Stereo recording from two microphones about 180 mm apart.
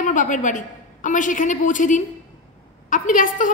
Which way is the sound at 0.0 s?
45° left (ahead or behind).